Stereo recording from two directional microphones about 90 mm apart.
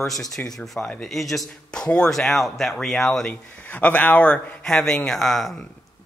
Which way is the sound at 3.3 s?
15° left (ahead or behind).